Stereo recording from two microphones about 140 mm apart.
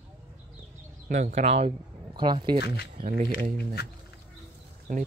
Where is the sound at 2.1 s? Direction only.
35° right (ahead or behind).